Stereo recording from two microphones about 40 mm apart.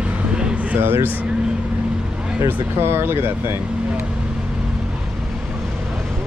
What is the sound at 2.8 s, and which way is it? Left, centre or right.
Speech, right.